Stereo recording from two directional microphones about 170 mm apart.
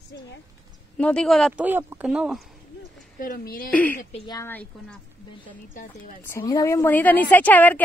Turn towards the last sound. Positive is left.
turn(degrees=10)  # may be behind; listen again after turning